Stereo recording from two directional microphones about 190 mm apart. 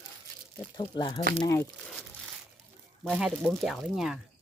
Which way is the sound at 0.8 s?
25° left (ahead or behind).